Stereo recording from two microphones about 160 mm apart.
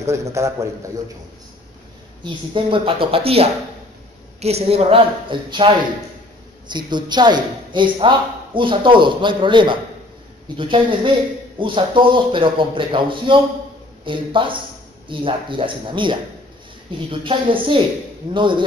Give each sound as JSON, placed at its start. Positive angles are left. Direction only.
{"t": 0.0, "sound": "a man's voice", "side_deg": -20}
{"t": 2.2, "sound": "speech", "side_deg": -30}
{"t": 6.9, "sound": "speech", "side_deg": -25}